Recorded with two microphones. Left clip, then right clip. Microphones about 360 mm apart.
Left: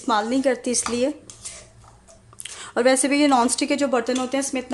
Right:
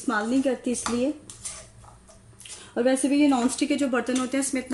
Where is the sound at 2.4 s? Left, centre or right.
Centre.